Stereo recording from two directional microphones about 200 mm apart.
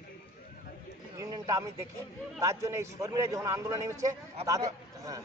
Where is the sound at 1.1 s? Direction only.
15° right (ahead or behind).